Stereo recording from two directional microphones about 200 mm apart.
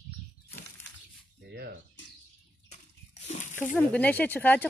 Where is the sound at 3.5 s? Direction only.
10° left (ahead or behind).